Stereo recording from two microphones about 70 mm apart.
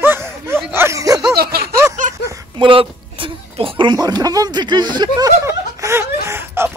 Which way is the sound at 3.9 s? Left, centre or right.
Right.